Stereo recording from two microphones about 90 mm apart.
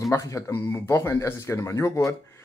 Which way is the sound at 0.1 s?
35° left (ahead or behind).